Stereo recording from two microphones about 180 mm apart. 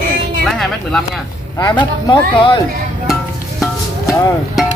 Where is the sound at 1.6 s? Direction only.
25° left (ahead or behind).